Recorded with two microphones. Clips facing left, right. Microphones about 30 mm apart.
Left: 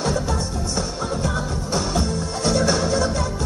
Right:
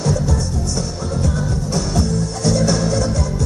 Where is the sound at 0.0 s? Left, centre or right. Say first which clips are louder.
Right 3 dB; left.